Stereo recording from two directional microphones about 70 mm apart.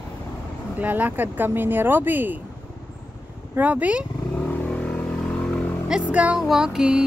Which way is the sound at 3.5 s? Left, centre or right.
Right.